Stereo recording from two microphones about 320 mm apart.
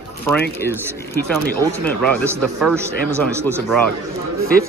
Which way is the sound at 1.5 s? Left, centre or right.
Centre.